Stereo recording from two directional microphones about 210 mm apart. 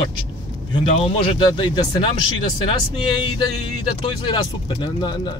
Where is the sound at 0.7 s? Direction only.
25° left (ahead or behind).